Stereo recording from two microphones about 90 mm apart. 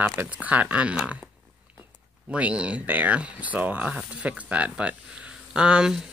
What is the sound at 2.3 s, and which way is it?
Speech, 15° right (ahead or behind).